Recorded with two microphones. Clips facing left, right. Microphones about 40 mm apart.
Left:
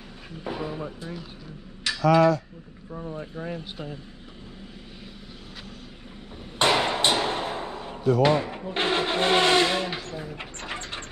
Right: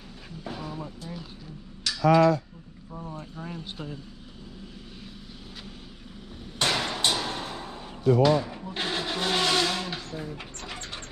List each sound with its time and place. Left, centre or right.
0.4 s music: left
2.1 s speech: left
3.2 s speech: centre
3.7 s speech: centre
6.6 s a sound: left
10.3 s pigeon: left